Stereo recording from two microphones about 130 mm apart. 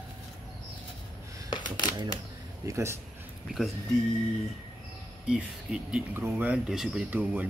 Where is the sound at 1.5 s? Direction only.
35° left (ahead or behind).